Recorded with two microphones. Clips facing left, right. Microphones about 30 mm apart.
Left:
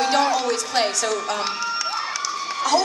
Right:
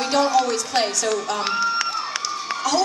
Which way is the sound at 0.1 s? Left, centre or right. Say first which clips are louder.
Right 4 dB; centre.